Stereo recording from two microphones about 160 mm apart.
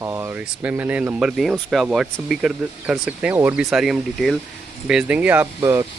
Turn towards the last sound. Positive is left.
turn(degrees=-15)  # may be behind; listen again after turning